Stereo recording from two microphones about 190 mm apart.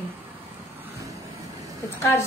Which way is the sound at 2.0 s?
15° left (ahead or behind).